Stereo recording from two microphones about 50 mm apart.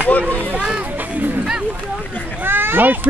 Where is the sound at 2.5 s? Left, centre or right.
Right.